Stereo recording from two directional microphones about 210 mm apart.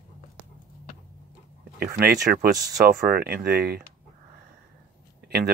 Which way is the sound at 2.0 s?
45° right (ahead or behind).